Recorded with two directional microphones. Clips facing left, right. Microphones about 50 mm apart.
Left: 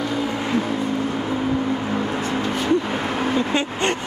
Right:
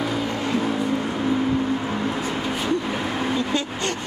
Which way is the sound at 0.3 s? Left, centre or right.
Left.